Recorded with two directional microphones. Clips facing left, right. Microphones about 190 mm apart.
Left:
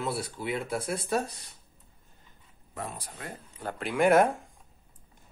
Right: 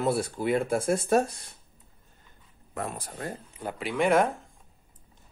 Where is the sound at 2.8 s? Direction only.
45° right (ahead or behind).